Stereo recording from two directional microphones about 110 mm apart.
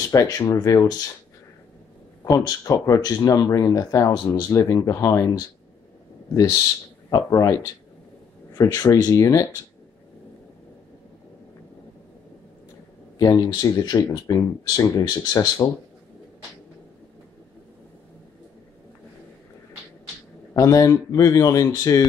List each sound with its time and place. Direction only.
0.1 s speech: 30° left (ahead or behind)
2.2 s speech: 35° left (ahead or behind)
7.1 s speech: 35° left (ahead or behind)
13.2 s speech: 35° left (ahead or behind)
20.5 s speech: 30° left (ahead or behind)